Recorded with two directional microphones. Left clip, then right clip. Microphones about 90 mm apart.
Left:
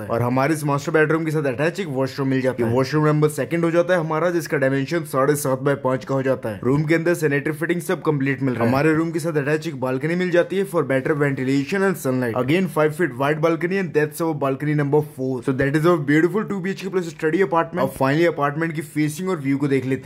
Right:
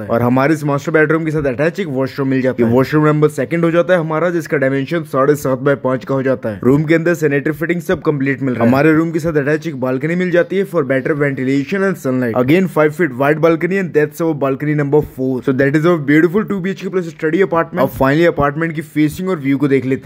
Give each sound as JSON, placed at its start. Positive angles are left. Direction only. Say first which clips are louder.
{"t": 0.7, "sound": "speech", "louder": "right 5 dB", "side_deg": -30}
{"t": 2.7, "sound": "speech", "louder": "right 7 dB", "side_deg": -45}
{"t": 8.7, "sound": "speech", "louder": "right 8 dB", "side_deg": -45}
{"t": 12.4, "sound": "speech", "louder": "right 8 dB", "side_deg": -45}
{"t": 15.8, "sound": "speech", "louder": "right 5 dB", "side_deg": -25}
{"t": 16.9, "sound": "speech", "louder": "right 4 dB", "side_deg": -20}
{"t": 17.4, "sound": "speech", "louder": "right 5 dB", "side_deg": -30}
{"t": 17.7, "sound": "speech", "louder": "right 6 dB", "side_deg": -50}